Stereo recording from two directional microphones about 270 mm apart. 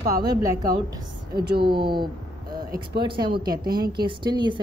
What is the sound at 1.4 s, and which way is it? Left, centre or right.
Speech, right.